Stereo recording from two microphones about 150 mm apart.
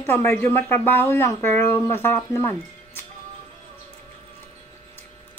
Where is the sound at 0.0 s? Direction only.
15° left (ahead or behind).